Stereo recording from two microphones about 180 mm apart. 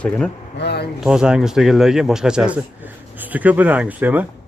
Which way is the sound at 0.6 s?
65° left (ahead or behind).